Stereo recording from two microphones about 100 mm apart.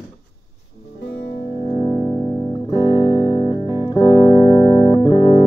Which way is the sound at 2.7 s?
50° left (ahead or behind).